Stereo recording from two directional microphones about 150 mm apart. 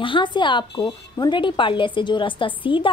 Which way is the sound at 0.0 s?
35° left (ahead or behind).